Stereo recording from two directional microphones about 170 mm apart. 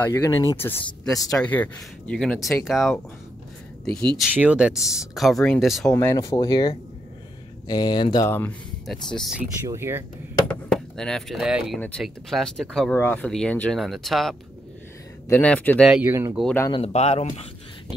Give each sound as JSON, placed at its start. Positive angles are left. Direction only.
{"t": 0.0, "sound": "speech", "side_deg": 15}
{"t": 4.2, "sound": "speech", "side_deg": -10}
{"t": 5.9, "sound": "speech", "side_deg": 15}
{"t": 8.3, "sound": "speech", "side_deg": 10}
{"t": 9.7, "sound": "speech", "side_deg": -15}
{"t": 10.7, "sound": "speech", "side_deg": 5}
{"t": 15.9, "sound": "speech", "side_deg": -10}
{"t": 16.7, "sound": "speech", "side_deg": 35}